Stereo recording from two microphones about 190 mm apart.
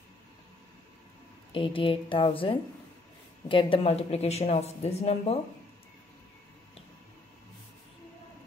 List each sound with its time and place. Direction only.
1.5 s a woman's voice: 25° left (ahead or behind)